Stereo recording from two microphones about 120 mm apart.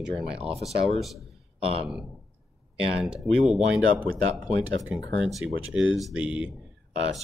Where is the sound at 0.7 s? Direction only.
Centre (ahead or behind).